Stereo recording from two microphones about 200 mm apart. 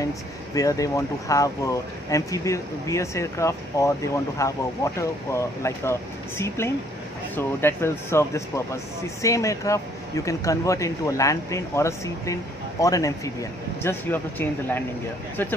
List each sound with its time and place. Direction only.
0.6 s speech: 15° left (ahead or behind)